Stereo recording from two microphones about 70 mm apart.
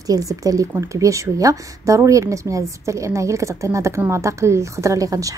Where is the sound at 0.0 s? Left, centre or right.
Right.